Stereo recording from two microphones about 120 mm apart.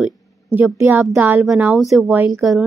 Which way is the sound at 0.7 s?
15° right (ahead or behind).